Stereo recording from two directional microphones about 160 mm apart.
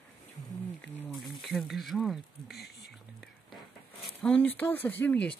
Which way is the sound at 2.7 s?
Centre (ahead or behind).